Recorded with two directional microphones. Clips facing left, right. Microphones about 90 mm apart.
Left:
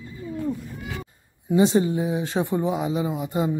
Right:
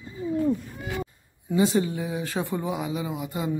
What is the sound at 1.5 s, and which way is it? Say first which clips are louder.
Speech: left 4 dB; 25° left (ahead or behind).